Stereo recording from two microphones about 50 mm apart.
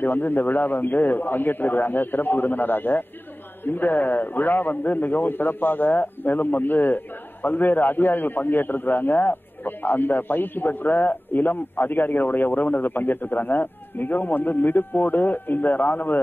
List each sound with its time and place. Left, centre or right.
0.0 s a man's voice: left